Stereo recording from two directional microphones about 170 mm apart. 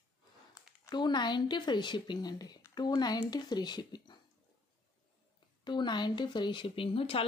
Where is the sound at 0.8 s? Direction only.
25° left (ahead or behind).